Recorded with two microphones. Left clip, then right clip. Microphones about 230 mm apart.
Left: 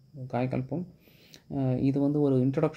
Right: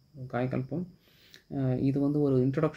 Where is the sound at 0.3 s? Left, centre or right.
Left.